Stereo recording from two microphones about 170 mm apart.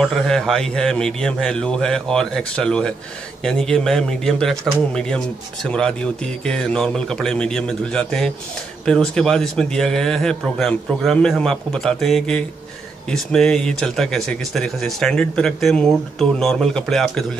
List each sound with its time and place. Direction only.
0.0 s speech: centre (ahead or behind)